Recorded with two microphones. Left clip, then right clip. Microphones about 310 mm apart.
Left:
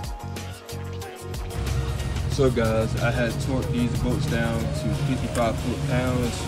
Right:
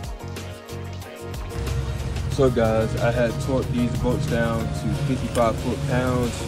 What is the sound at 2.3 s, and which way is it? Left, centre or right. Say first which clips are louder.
Speech: right 3 dB; centre.